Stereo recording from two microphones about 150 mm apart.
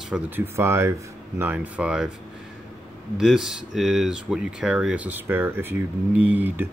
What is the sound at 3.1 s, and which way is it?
Speech, 5° right (ahead or behind).